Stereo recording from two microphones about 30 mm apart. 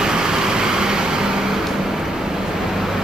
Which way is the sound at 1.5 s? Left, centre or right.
Centre.